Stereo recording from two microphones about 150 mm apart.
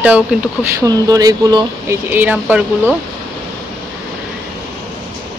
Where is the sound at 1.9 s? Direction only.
10° right (ahead or behind).